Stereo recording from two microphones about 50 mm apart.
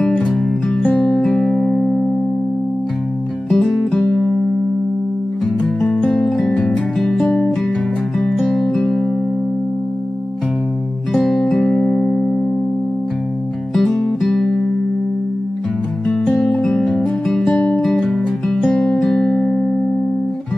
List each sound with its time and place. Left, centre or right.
0.8 s music: left
1.2 s music: centre
3.4 s music: centre
4.0 s music: centre
5.9 s music: centre
6.1 s music: centre
11.1 s music: centre; by 12.4 s left
13.7 s music: centre
16.3 s music: centre
19.3 s music: left